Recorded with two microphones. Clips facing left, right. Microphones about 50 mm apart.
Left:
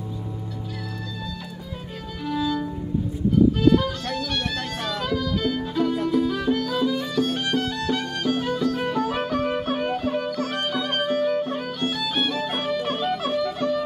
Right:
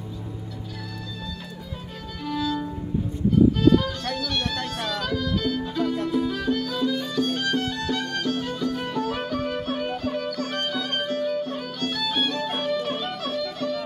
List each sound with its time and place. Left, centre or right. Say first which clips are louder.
2.4 s music: left 1 dB; centre
3.8 s music: left 1 dB; centre
8.6 s violin: left 2 dB; centre
8.9 s music: left 3 dB; centre
11.9 s music: right 1 dB; centre